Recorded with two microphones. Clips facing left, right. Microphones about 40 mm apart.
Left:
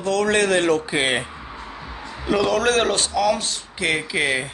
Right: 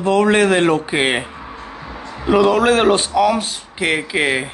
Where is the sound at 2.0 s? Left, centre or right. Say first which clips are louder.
Right 7 dB; centre.